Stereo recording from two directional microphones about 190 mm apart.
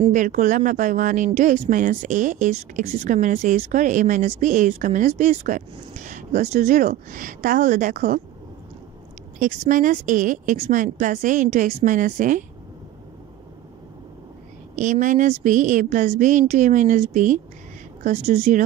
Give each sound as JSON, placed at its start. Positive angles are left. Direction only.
{"t": 0.1, "sound": "speech", "side_deg": -40}
{"t": 9.4, "sound": "a woman's voice", "side_deg": -45}
{"t": 14.8, "sound": "speech", "side_deg": -40}